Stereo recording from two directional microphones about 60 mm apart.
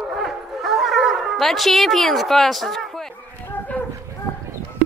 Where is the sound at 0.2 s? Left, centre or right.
Centre.